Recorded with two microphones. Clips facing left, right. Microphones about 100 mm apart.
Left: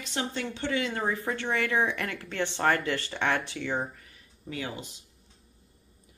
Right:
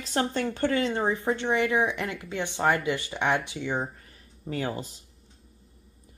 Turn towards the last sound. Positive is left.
turn(degrees=-40)  # may be behind; listen again after turning